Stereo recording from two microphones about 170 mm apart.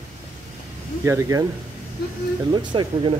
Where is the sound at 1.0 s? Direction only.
15° right (ahead or behind).